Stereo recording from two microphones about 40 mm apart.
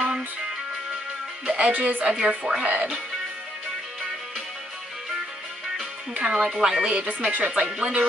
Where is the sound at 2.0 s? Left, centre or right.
Centre.